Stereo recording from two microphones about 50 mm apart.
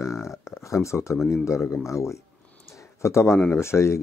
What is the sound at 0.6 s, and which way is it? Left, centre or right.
Speech, left.